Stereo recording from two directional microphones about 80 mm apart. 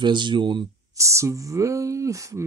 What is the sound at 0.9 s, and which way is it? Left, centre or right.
Speech, right.